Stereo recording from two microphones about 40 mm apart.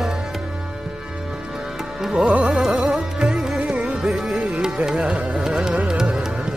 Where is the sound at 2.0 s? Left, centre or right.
Centre.